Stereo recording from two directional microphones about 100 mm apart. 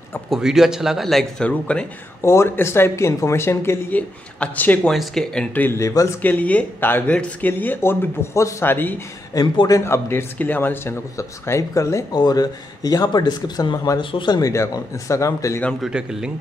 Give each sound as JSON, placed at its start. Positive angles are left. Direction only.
{"t": 0.3, "sound": "speech", "side_deg": -5}
{"t": 2.2, "sound": "a man's voice", "side_deg": 25}
{"t": 4.8, "sound": "speech", "side_deg": 0}
{"t": 5.5, "sound": "a man's voice", "side_deg": 20}
{"t": 5.8, "sound": "speech", "side_deg": 30}
{"t": 6.2, "sound": "a man's voice", "side_deg": 15}
{"t": 9.3, "sound": "a man's voice", "side_deg": 40}
{"t": 14.5, "sound": "speech", "side_deg": 30}
{"t": 15.8, "sound": "a man's voice", "side_deg": -5}